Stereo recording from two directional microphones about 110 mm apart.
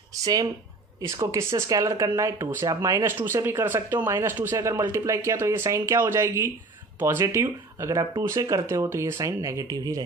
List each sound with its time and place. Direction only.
0.1 s speech: 30° right (ahead or behind)